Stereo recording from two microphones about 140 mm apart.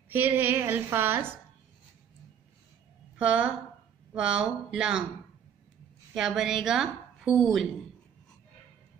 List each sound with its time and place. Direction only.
0.1 s a woman's voice: 15° right (ahead or behind)
3.2 s a woman's voice: 10° right (ahead or behind)
6.1 s a woman's voice: 5° right (ahead or behind)